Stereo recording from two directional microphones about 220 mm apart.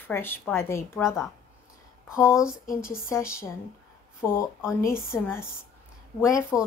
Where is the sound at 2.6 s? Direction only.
40° left (ahead or behind).